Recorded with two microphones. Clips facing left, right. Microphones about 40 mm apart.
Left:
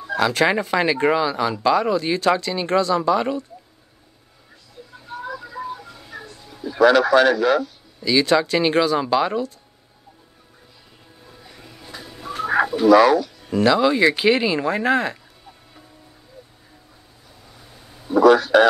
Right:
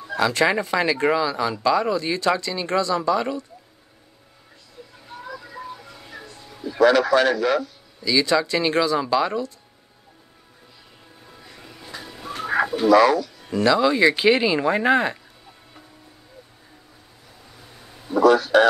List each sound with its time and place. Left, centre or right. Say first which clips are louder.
0.2 s speech: left 1 dB; centre
6.9 s speech: left 4 dB; left
8.0 s speech: left 2 dB; left
11.2 s music: even; centre
12.3 s bird: left 2 dB; centre
12.8 s speech: left 2 dB; left
13.5 s speech: left 1 dB; centre
17.6 s a sound: right 1 dB; centre
18.2 s a man's voice: left 2 dB; left